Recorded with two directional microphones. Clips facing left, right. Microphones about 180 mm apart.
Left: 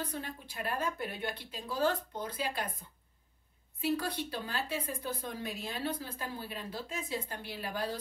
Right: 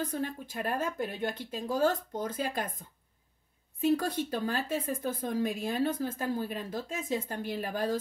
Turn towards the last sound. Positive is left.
turn(degrees=-45)  # may be behind; listen again after turning